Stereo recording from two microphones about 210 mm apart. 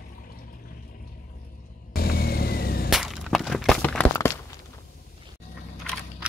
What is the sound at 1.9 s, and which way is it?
Vehicle, 45° left (ahead or behind).